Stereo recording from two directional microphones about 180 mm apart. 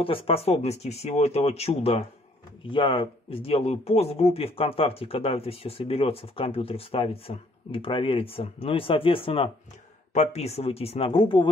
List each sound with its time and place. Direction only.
0.0 s speech: 30° left (ahead or behind)